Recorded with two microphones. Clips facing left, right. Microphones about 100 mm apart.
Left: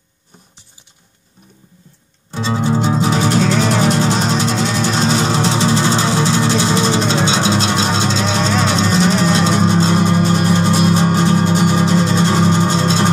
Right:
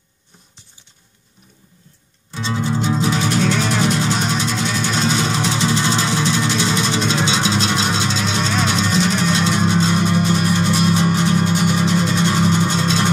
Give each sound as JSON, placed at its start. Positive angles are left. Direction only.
{"t": 2.3, "sound": "music", "side_deg": 35}